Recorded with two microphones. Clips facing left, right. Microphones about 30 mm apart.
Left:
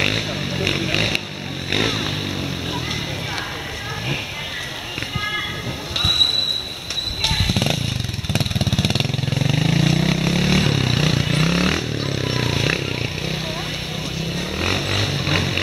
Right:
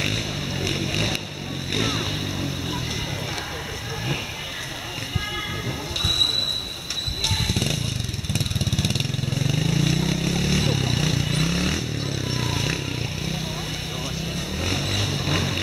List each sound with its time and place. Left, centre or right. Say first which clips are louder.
0.0 s vehicle: left 5 dB; left
5.9 s basketball bounce: left 4 dB; left
8.3 s vehicle: left 5 dB; left
14.6 s vehicle: left 5 dB; left